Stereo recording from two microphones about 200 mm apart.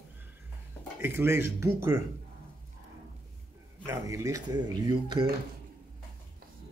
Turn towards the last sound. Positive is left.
turn(degrees=-20)  # may be behind; listen again after turning